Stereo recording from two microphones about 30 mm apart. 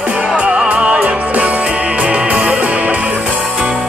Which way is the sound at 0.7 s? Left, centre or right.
Right.